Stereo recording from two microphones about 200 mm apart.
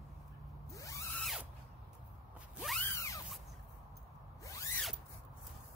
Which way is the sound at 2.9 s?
15° left (ahead or behind).